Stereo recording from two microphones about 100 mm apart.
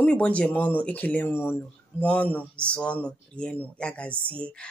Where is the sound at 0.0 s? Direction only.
10° left (ahead or behind).